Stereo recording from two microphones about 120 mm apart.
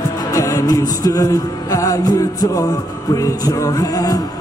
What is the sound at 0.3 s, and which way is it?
Music, 30° left (ahead or behind).